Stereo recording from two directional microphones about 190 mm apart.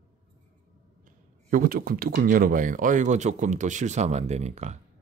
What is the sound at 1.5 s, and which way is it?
Speech, 50° right (ahead or behind).